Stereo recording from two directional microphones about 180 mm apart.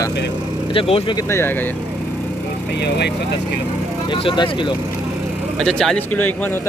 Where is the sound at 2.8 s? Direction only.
70° left (ahead or behind).